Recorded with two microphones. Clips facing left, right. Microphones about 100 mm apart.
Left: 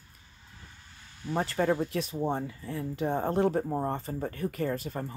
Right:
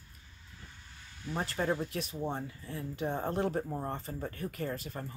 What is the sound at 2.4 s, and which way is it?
Speech, 60° left (ahead or behind).